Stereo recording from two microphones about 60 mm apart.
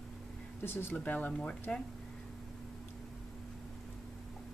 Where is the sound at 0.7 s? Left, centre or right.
Left.